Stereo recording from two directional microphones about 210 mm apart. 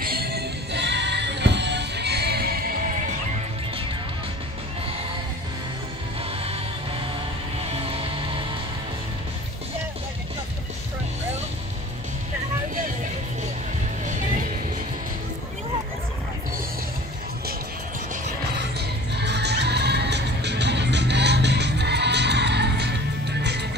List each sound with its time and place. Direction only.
0.0 s music: 45° right (ahead or behind)
18.8 s music: 55° right (ahead or behind)